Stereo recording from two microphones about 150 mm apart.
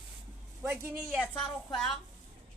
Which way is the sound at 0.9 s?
5° right (ahead or behind).